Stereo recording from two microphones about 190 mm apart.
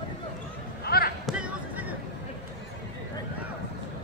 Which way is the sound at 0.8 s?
55° left (ahead or behind).